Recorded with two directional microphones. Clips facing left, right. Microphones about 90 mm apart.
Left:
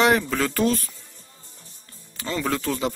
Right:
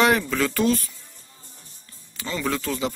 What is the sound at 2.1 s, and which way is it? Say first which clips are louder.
Speech: left 1 dB; 30° left (ahead or behind).